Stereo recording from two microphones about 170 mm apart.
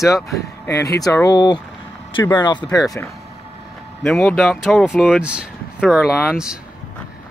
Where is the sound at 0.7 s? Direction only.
20° left (ahead or behind).